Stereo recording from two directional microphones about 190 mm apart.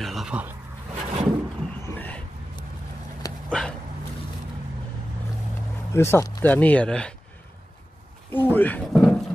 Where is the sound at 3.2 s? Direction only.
20° left (ahead or behind).